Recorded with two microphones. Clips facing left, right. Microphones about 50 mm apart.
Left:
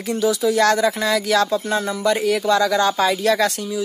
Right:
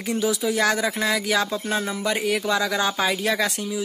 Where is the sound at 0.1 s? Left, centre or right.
Centre.